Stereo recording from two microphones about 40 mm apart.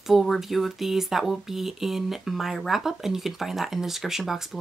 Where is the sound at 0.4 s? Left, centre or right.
Centre.